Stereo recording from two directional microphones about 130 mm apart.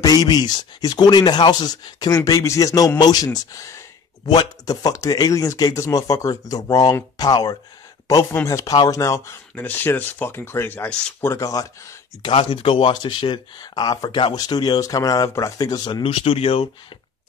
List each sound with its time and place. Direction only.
0.0 s speech: 30° left (ahead or behind)
9.6 s speech: 15° left (ahead or behind)
11.1 s speech: 25° left (ahead or behind)
12.3 s speech: 45° left (ahead or behind)